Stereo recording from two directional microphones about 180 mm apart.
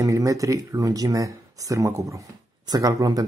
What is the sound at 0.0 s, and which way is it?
Speech, 15° right (ahead or behind).